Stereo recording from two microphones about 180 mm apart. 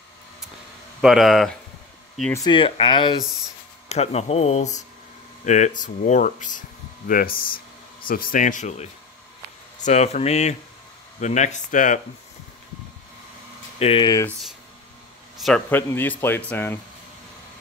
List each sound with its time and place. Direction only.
1.0 s speech: centre (ahead or behind)
2.3 s speech: 25° left (ahead or behind); by 7.3 s 50° left (ahead or behind)
7.4 s a sound: 30° left (ahead or behind)
8.1 s speech: 50° left (ahead or behind)
13.7 s speech: 35° left (ahead or behind)
15.3 s a sound: centre (ahead or behind)
15.7 s speech: 10° left (ahead or behind)